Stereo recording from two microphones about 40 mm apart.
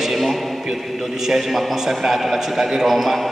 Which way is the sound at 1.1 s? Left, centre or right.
Centre.